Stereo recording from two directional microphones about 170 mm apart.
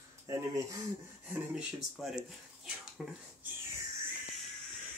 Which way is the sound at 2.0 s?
5° right (ahead or behind).